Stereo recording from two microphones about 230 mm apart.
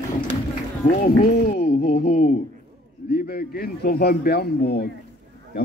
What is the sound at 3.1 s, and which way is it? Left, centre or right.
A man's voice, left.